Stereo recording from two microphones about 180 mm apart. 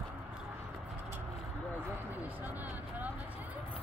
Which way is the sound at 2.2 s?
10° right (ahead or behind).